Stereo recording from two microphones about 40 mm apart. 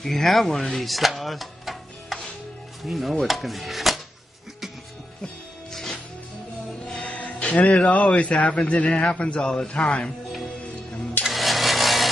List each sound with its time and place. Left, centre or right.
0.0 s speech: centre
2.8 s dishes: centre
5.7 s music: centre
7.2 s speech: left
11.3 s a sound: centre